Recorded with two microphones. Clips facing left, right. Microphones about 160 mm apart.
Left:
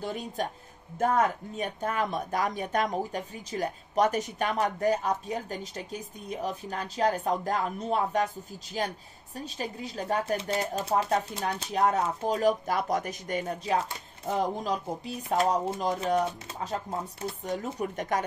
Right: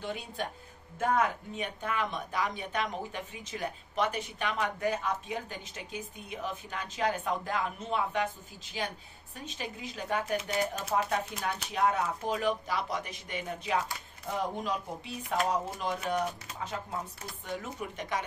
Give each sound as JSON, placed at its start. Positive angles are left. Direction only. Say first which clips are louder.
{"t": 0.0, "sound": "speech", "louder": "left 4 dB", "side_deg": 40}
{"t": 9.4, "sound": "speech", "louder": "left 4 dB", "side_deg": 35}